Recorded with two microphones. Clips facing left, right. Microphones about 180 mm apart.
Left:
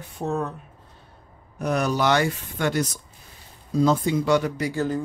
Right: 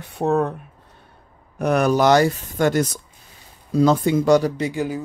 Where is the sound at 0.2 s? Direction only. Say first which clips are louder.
Right 7 dB; 60° right (ahead or behind).